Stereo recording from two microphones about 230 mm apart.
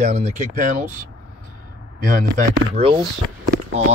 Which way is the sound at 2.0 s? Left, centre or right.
Right.